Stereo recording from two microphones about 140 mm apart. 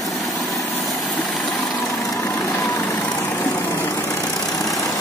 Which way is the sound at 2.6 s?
20° left (ahead or behind).